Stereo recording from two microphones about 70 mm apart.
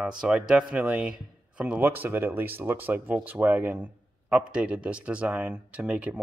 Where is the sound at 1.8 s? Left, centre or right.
Right.